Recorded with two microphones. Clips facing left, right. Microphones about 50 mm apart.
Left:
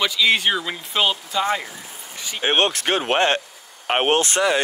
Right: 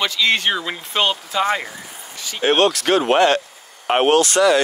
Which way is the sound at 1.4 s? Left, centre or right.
Right.